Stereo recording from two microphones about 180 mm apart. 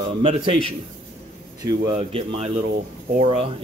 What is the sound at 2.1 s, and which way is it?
Speech, 30° right (ahead or behind).